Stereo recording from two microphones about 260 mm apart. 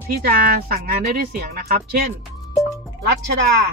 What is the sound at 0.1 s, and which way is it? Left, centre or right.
Speech, right.